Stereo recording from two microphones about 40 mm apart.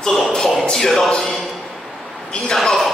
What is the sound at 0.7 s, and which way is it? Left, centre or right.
Speech, centre.